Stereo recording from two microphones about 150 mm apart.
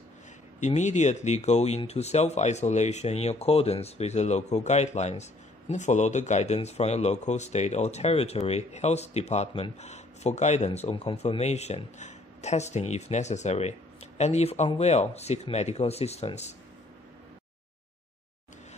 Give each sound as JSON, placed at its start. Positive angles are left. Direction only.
{"t": 0.6, "sound": "speech", "side_deg": 50}